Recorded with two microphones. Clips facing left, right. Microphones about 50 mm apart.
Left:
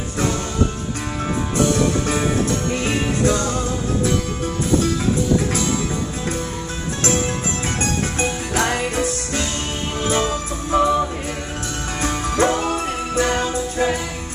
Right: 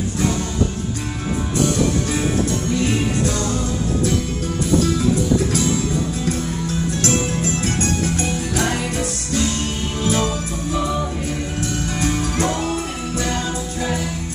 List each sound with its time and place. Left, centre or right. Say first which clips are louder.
2.7 s music: right 1 dB; left
8.2 s music: left 1 dB; left
12.4 s music: left 3 dB; left